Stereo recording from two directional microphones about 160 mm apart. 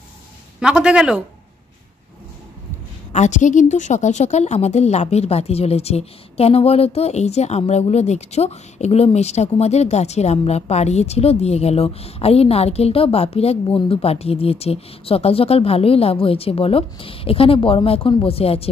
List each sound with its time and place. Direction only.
0.6 s a man's voice: 5° right (ahead or behind)
3.1 s a woman's voice: 45° left (ahead or behind)